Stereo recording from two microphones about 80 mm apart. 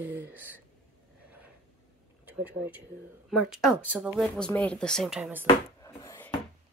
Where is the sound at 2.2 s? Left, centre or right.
Right.